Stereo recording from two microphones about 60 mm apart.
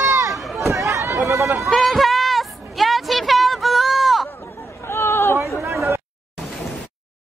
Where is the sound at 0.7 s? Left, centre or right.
Right.